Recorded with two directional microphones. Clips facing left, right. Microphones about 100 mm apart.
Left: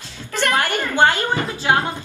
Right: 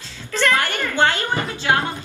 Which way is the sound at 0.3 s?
20° left (ahead or behind).